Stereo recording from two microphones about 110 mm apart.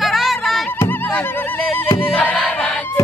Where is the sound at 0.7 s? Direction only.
20° left (ahead or behind).